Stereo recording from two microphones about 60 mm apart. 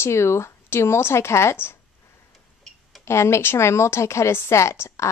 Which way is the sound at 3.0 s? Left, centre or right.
Left.